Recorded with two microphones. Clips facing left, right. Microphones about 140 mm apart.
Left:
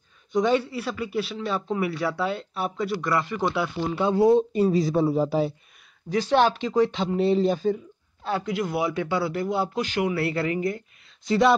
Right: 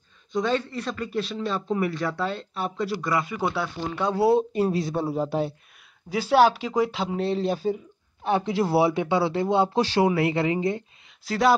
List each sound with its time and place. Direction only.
0.3 s a man's voice: 10° left (ahead or behind); by 7.7 s 5° right (ahead or behind)
8.2 s speech: 25° right (ahead or behind)
10.1 s speech: 20° right (ahead or behind)
11.2 s a man's voice: centre (ahead or behind)